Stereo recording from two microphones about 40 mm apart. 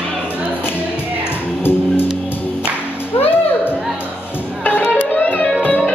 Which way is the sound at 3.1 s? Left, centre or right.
Left.